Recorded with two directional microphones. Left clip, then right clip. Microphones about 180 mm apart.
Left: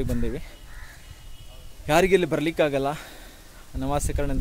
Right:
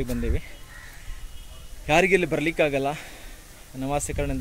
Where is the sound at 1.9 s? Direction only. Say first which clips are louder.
Even; 25° left (ahead or behind).